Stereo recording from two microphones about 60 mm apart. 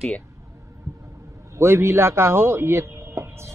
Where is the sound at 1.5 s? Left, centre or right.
Right.